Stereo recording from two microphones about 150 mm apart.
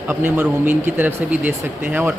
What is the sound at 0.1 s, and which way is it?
Speech, 15° right (ahead or behind).